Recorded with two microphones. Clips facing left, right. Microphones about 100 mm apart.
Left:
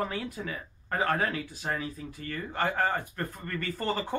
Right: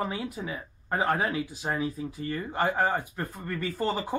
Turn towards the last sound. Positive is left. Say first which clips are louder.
# right 2 dB
turn(degrees=-10)  # may be behind; listen again after turning